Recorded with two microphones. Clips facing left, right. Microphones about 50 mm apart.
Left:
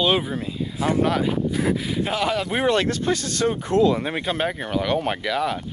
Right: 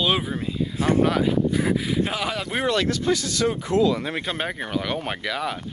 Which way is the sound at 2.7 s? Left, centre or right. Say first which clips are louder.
Even; left.